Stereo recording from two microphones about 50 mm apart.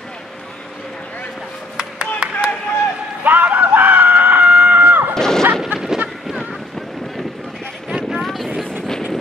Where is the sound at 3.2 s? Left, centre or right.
Right.